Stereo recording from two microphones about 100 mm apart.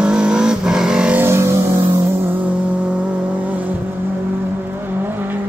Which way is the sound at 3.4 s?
15° right (ahead or behind).